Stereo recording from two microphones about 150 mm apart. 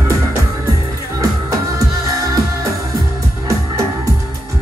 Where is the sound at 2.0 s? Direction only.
20° right (ahead or behind).